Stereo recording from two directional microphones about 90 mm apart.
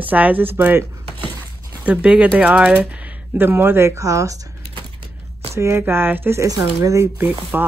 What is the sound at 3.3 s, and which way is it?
Speech, 25° right (ahead or behind).